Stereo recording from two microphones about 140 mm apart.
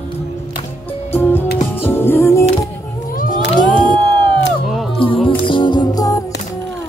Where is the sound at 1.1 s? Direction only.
15° left (ahead or behind).